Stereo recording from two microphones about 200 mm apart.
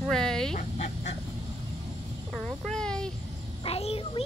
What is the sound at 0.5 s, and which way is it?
Speech, 35° left (ahead or behind).